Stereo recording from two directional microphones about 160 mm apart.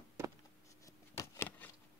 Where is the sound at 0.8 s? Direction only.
15° left (ahead or behind).